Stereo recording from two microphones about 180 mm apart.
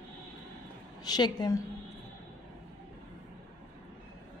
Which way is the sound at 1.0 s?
20° left (ahead or behind).